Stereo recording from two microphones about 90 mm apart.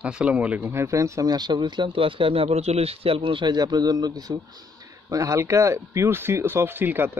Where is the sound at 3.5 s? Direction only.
50° right (ahead or behind).